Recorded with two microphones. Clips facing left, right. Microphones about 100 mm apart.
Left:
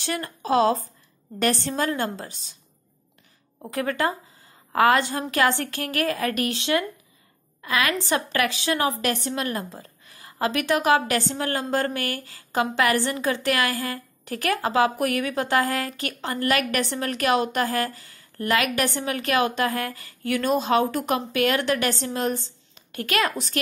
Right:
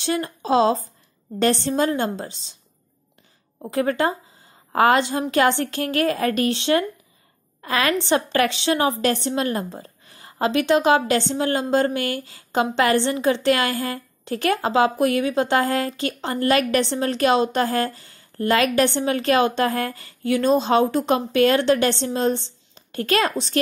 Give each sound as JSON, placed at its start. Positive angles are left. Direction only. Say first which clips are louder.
{"t": 0.0, "sound": "a woman's voice", "louder": "right 5 dB", "side_deg": -20}
{"t": 3.6, "sound": "a woman's voice", "louder": "right 4 dB", "side_deg": -25}